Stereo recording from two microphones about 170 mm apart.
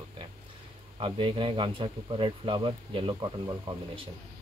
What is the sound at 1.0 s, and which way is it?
Speech, 30° right (ahead or behind).